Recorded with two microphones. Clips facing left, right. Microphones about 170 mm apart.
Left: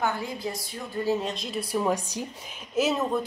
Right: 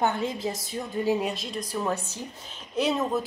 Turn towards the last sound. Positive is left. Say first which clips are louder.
# left 1 dB
turn(degrees=0)  # may be behind; listen again after turning